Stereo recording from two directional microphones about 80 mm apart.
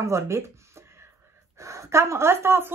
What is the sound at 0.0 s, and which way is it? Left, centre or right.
Speech, right.